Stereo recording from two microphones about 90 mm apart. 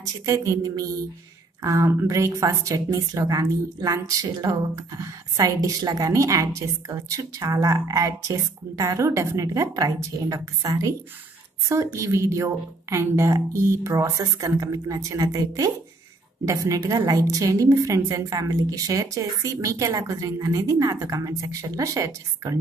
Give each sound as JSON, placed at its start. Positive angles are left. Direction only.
{"t": 0.0, "sound": "a woman's voice", "side_deg": -35}